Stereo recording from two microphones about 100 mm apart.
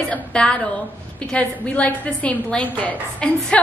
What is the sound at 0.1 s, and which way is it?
A woman's voice, 10° left (ahead or behind).